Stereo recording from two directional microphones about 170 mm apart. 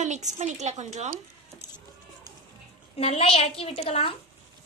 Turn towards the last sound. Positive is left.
turn(degrees=35)  # may be behind; listen again after turning